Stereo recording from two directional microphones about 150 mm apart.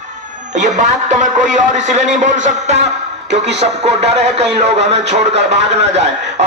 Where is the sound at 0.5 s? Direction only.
55° right (ahead or behind).